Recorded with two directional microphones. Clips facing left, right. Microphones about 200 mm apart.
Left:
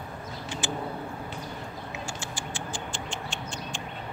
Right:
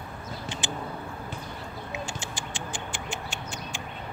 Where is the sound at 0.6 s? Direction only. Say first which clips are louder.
Left 4 dB; 20° right (ahead or behind).